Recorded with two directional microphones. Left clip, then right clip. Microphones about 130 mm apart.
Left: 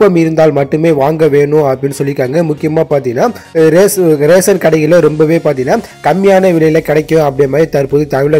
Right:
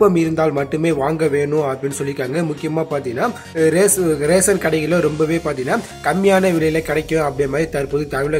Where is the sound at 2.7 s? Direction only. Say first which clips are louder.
Left 10 dB; 40° left (ahead or behind).